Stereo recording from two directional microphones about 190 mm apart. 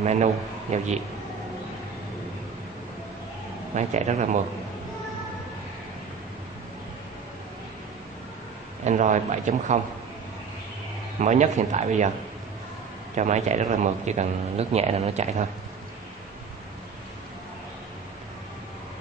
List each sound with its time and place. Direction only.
0.0 s a man's voice: 35° right (ahead or behind)
3.7 s a man's voice: 40° right (ahead or behind)
8.8 s a man's voice: 40° right (ahead or behind)
11.1 s a man's voice: 40° right (ahead or behind)
13.1 s a man's voice: 40° right (ahead or behind)